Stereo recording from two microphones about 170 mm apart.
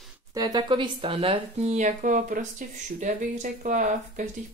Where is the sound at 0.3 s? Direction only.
25° right (ahead or behind).